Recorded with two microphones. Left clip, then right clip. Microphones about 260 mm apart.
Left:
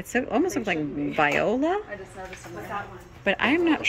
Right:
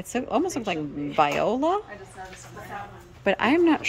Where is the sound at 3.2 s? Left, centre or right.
Centre.